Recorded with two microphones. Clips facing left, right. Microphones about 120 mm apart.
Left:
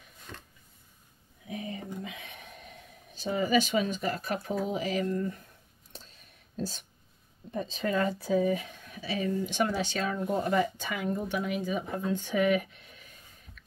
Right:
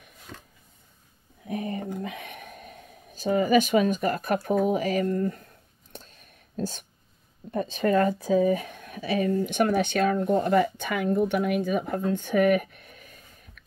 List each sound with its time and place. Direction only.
1.5 s speech: 55° right (ahead or behind)
5.9 s whispering: 50° right (ahead or behind)
7.5 s speech: 55° right (ahead or behind)
8.2 s speech: 45° right (ahead or behind)